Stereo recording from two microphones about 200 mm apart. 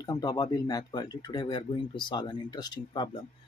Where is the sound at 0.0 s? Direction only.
20° left (ahead or behind).